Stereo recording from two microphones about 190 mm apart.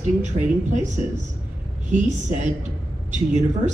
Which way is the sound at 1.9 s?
40° right (ahead or behind).